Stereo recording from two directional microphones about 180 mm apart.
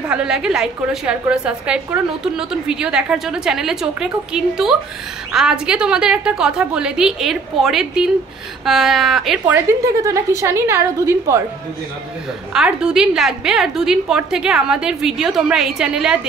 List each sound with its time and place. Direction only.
0.1 s a woman's voice: 5° right (ahead or behind)
9.7 s a woman's voice: 15° right (ahead or behind)
12.5 s a woman's voice: 5° right (ahead or behind)